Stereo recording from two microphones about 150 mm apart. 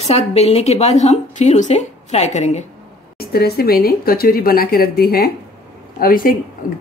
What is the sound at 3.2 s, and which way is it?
Speech, 90° left.